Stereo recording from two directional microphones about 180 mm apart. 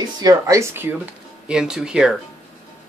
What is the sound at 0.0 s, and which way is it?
Speech, 20° right (ahead or behind).